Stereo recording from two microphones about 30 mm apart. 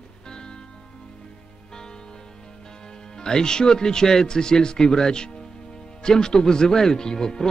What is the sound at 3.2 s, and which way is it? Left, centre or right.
Speech, left.